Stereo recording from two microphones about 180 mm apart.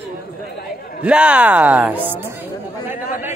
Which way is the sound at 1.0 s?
5° right (ahead or behind).